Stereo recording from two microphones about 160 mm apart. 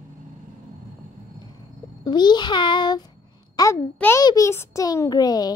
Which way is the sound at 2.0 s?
25° left (ahead or behind).